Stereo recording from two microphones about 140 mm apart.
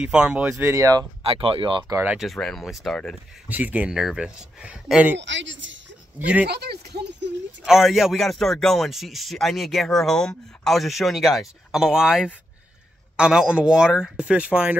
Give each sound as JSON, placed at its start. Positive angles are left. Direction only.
{"t": 0.0, "sound": "speech", "side_deg": -5}
{"t": 1.2, "sound": "speech", "side_deg": -40}
{"t": 2.1, "sound": "speech", "side_deg": 0}
{"t": 3.4, "sound": "speech", "side_deg": -10}
{"t": 6.1, "sound": "speech", "side_deg": -10}
{"t": 7.6, "sound": "speech", "side_deg": 0}